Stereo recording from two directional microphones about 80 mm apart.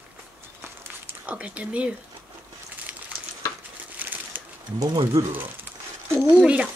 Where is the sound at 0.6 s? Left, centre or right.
Right.